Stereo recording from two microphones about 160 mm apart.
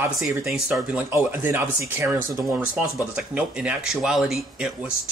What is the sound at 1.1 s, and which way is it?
Speech, 15° right (ahead or behind).